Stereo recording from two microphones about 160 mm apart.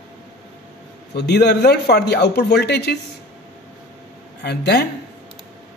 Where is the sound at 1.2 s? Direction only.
90° left.